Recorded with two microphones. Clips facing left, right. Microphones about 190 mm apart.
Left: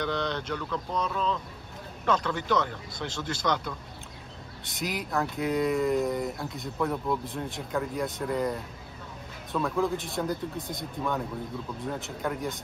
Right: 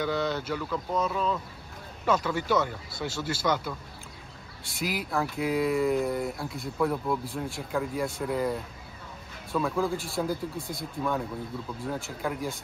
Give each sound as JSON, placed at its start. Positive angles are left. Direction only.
{"t": 0.0, "sound": "speech", "side_deg": -5}